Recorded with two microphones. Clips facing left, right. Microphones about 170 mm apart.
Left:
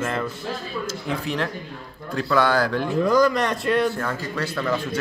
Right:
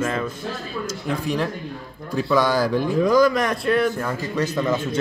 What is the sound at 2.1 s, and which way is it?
Speech, 15° right (ahead or behind).